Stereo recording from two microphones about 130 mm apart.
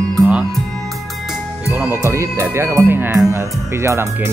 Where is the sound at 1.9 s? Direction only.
20° right (ahead or behind).